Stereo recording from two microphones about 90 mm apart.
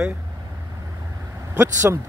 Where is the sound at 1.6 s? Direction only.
35° right (ahead or behind).